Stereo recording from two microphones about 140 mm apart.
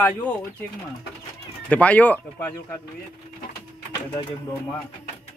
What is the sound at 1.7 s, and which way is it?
Speech, 10° left (ahead or behind).